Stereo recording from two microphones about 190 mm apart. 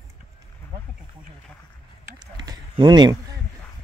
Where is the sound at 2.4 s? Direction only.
20° right (ahead or behind).